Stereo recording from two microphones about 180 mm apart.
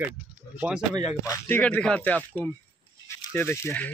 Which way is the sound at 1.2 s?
15° left (ahead or behind).